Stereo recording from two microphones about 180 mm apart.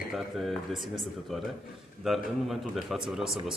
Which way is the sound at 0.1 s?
Centre (ahead or behind).